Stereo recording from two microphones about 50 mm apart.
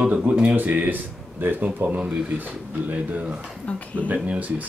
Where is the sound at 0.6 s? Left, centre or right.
Right.